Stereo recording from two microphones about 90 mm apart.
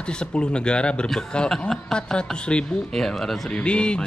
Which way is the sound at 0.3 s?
10° left (ahead or behind).